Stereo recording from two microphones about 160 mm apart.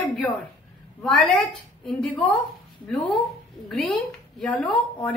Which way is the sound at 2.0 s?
5° left (ahead or behind).